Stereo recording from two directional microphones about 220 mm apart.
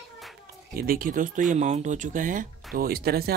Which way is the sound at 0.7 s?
40° right (ahead or behind).